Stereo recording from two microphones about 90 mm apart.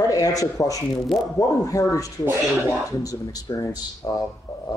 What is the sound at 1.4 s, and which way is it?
Speech, 40° left (ahead or behind).